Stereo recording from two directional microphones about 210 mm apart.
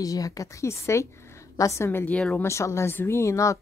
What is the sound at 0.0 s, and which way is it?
A woman's voice, 15° left (ahead or behind).